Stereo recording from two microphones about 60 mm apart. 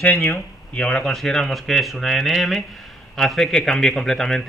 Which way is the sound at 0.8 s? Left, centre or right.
Centre.